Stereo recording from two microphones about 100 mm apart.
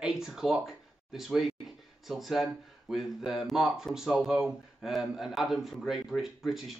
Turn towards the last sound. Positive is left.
turn(degrees=0)  # may be behind; listen again after turning